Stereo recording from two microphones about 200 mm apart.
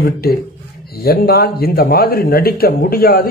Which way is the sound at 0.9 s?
50° left (ahead or behind).